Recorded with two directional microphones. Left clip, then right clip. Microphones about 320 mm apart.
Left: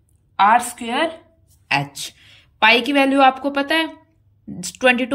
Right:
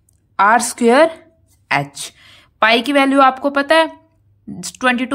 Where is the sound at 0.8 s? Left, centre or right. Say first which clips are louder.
Right 10 dB; centre.